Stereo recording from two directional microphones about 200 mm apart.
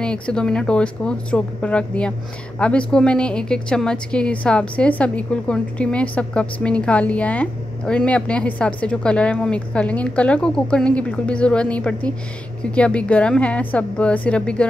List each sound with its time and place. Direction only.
0.0 s a woman's voice: 5° left (ahead or behind)